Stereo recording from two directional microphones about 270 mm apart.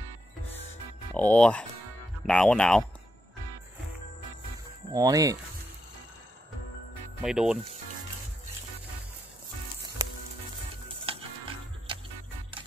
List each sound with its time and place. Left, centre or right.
1.1 s speech: centre
4.9 s speech: centre
7.2 s speech: centre
11.1 s music: centre